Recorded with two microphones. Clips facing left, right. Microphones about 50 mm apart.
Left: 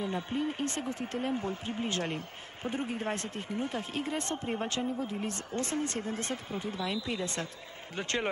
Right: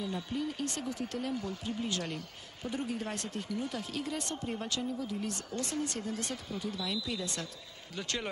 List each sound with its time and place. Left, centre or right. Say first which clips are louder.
0.0 s speech: left 3 dB; left